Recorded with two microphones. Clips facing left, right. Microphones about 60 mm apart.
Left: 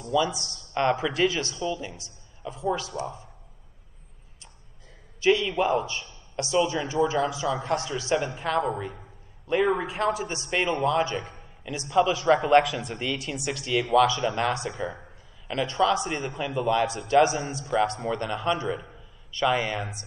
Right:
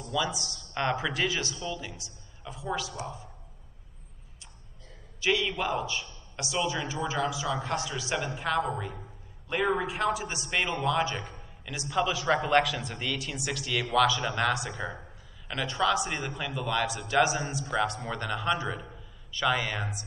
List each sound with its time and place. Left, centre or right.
0.1 s a man's voice: left
5.2 s a man's voice: left